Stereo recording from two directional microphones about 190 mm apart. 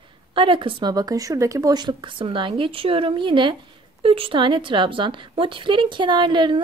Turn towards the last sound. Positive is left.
turn(degrees=-25)  # may be behind; listen again after turning